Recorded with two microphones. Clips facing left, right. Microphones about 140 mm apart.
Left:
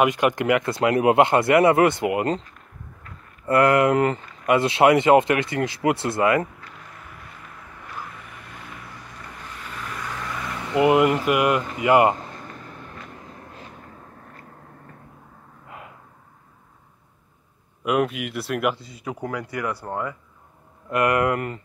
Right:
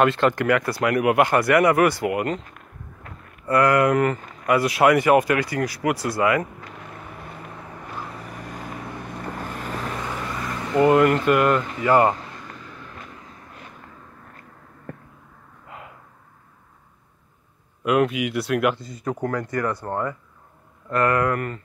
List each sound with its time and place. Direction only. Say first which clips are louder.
0.0 s speech: right 1 dB; 15° left (ahead or behind)
3.4 s speech: left 1 dB; 25° left (ahead or behind)
6.9 s vehicle: right 5 dB; 25° right (ahead or behind)
10.7 s speech: right 1 dB; 15° left (ahead or behind)
12.6 s vehicle: left 1 dB; 50° left (ahead or behind)
17.8 s speech: right 2 dB; centre (ahead or behind)
20.9 s speech: even; 20° left (ahead or behind)